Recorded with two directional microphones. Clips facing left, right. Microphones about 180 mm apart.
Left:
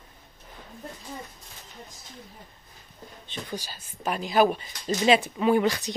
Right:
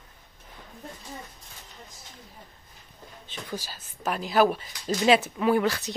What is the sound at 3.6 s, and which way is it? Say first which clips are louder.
A woman's voice: even; 5° right (ahead or behind).